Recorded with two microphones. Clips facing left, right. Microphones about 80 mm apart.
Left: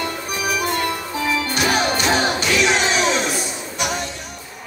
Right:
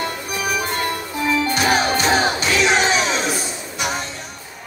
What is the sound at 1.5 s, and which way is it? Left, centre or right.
Music, right.